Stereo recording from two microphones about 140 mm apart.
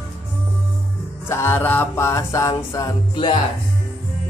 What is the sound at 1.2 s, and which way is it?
Music, 15° left (ahead or behind).